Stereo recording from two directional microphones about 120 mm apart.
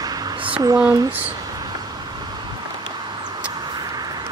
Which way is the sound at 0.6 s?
30° right (ahead or behind).